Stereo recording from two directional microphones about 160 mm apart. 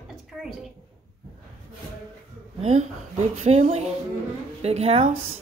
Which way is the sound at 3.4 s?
40° right (ahead or behind).